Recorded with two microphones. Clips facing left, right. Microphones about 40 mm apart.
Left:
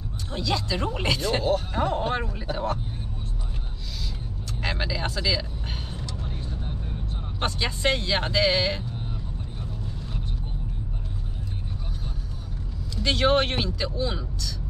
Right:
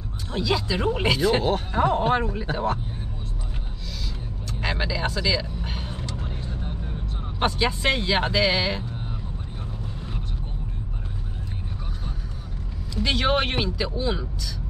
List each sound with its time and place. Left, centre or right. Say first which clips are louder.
0.3 s speech: right 3 dB; centre
4.5 s vehicle: right 2 dB; centre
5.9 s vehicle: right 2 dB; right
7.3 s speech: right 5 dB; centre
12.9 s speech: left 1 dB; centre